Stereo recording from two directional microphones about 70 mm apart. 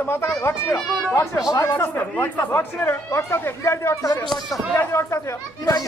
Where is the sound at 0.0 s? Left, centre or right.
Left.